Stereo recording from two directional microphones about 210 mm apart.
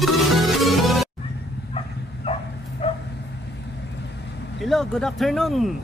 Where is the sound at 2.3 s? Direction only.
25° left (ahead or behind).